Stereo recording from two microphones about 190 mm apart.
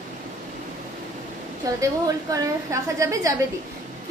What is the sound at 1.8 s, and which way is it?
A woman's voice, 15° right (ahead or behind).